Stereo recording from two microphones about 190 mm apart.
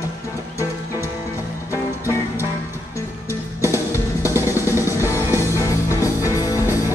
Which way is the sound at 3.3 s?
15° left (ahead or behind).